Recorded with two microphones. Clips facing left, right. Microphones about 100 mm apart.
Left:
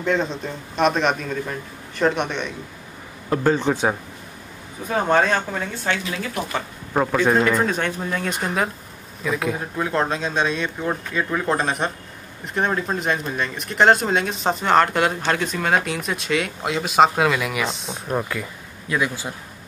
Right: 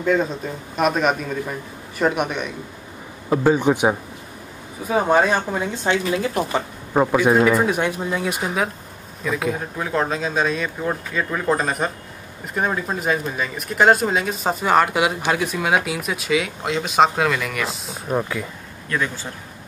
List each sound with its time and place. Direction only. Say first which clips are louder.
0.0 s a man's voice: right 2 dB; 5° right (ahead or behind); by 6.3 s 20° right (ahead or behind)
6.9 s a man's voice: right 2 dB; 10° right (ahead or behind)
18.9 s a man's voice: left 1 dB; 10° left (ahead or behind)